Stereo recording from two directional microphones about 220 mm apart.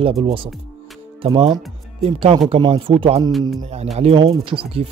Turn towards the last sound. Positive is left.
turn(degrees=-25)  # may be behind; listen again after turning